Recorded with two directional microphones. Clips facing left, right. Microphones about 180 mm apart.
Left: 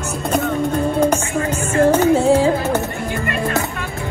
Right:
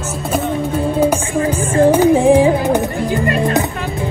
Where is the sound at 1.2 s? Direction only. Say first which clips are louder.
Right 4 dB; 30° right (ahead or behind).